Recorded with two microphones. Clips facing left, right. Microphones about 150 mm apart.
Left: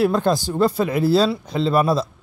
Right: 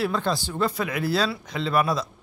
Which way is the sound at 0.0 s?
45° left (ahead or behind).